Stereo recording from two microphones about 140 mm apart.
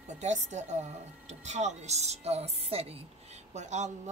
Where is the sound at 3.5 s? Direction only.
55° right (ahead or behind).